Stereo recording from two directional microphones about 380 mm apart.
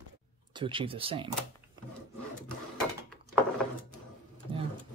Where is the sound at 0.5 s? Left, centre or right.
Centre.